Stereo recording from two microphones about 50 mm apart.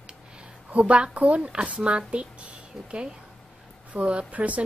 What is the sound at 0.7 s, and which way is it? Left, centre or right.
A woman's voice, right.